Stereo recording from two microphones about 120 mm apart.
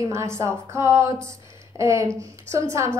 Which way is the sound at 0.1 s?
25° right (ahead or behind).